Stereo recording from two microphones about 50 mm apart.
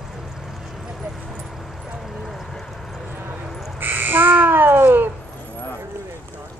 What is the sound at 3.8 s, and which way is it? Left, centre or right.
Crow, right.